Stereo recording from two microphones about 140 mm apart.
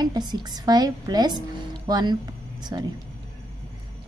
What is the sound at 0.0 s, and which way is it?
A woman's voice, 30° right (ahead or behind).